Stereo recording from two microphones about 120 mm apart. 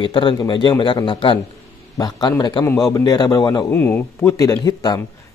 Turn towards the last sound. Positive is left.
turn(degrees=30)  # may be behind; listen again after turning